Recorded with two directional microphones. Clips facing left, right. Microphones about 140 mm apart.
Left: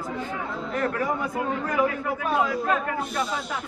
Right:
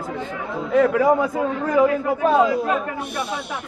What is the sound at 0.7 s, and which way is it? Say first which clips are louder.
Speech: right 11 dB; 90° right.